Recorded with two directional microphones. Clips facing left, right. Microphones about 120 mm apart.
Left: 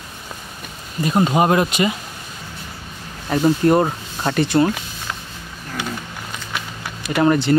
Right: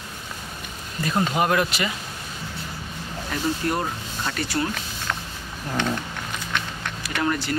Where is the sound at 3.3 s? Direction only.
40° left (ahead or behind).